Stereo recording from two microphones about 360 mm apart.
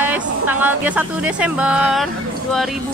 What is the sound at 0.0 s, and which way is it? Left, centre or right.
Speech, centre.